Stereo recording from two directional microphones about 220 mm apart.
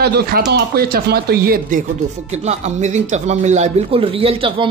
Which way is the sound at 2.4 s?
30° right (ahead or behind).